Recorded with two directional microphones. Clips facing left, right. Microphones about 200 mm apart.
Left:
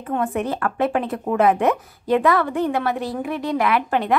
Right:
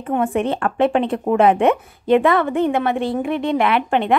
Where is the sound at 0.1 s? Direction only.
25° right (ahead or behind).